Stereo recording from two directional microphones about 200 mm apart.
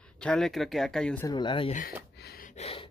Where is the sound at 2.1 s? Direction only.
50° left (ahead or behind).